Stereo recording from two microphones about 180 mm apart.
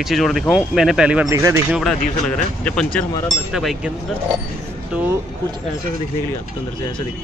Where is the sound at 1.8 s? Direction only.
Centre (ahead or behind).